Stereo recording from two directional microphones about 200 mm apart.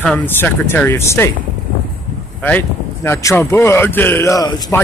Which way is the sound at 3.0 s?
15° left (ahead or behind).